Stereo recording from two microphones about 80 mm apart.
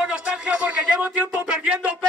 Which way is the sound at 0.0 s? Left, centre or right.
Centre.